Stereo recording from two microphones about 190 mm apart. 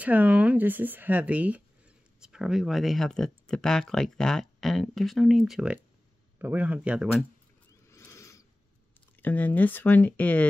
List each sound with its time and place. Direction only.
0.0 s speech: 10° right (ahead or behind)
7.9 s owl: 15° left (ahead or behind)
9.2 s speech: 10° left (ahead or behind)